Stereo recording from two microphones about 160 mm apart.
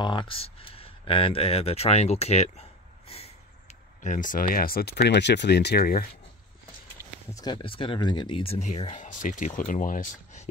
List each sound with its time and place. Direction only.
0.0 s speech: 30° left (ahead or behind); by 6.0 s 70° left (ahead or behind)
7.3 s speech: 25° left (ahead or behind); by 10.5 s 50° left (ahead or behind)